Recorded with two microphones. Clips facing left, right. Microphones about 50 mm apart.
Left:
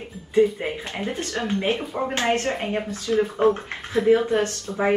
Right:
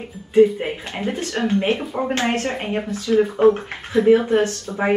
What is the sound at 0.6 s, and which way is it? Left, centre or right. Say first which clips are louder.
A woman's voice: right 2 dB; right.